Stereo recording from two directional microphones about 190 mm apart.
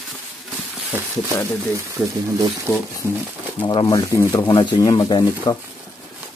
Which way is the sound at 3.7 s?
20° left (ahead or behind).